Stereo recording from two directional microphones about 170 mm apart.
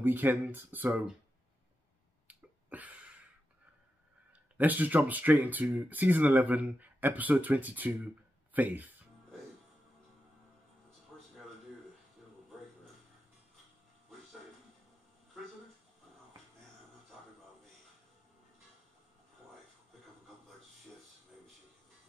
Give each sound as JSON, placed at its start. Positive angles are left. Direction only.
{"t": 0.0, "sound": "speech", "side_deg": -10}
{"t": 2.2, "sound": "a sound", "side_deg": -10}
{"t": 4.6, "sound": "speech", "side_deg": -10}